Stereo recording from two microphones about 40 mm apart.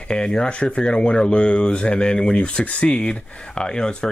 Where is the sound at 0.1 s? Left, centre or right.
Left.